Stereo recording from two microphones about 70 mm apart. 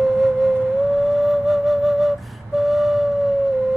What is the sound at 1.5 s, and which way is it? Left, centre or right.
Flute, centre.